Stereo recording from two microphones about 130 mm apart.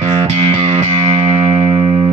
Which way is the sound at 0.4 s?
45° right (ahead or behind).